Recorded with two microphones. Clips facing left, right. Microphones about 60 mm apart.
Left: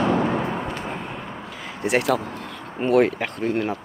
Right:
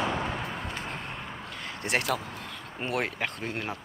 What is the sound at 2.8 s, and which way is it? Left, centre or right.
Speech, centre.